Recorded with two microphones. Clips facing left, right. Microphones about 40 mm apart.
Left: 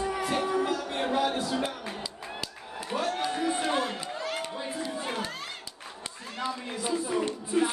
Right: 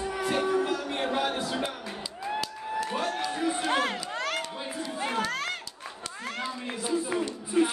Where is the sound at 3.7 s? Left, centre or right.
Right.